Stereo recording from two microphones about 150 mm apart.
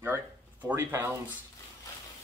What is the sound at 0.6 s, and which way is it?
Speech, 15° right (ahead or behind).